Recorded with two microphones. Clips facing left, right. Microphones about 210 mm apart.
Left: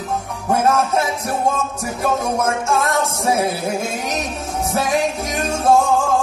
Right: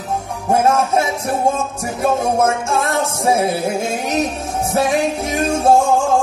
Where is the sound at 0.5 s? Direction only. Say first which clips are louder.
Right 2 dB; 30° right (ahead or behind).